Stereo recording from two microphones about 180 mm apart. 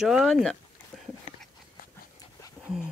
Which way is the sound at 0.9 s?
Centre (ahead or behind).